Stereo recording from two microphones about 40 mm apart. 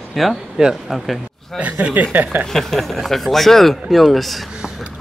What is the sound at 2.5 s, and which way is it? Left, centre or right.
Speech, centre.